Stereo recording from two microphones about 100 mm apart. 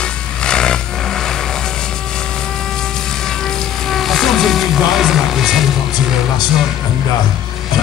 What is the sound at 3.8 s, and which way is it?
Music, centre (ahead or behind).